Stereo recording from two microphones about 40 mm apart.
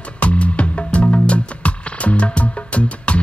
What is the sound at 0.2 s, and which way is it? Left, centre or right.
Music, left.